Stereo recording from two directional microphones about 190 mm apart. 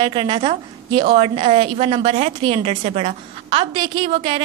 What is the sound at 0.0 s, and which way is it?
A woman's voice, 25° right (ahead or behind).